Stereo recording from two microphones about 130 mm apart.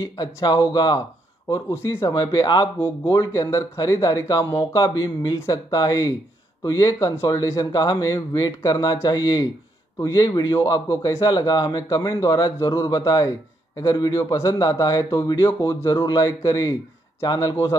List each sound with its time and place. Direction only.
0.0 s speech: 25° left (ahead or behind)
1.7 s a man's voice: 20° left (ahead or behind)
4.5 s a man's voice: 40° left (ahead or behind)